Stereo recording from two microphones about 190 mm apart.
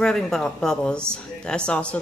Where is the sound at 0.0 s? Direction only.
5° left (ahead or behind).